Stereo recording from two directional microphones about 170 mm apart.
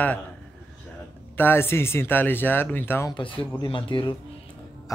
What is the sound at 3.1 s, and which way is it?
Speech, 30° left (ahead or behind).